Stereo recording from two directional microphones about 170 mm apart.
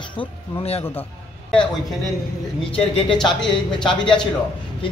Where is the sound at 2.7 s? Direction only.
35° left (ahead or behind).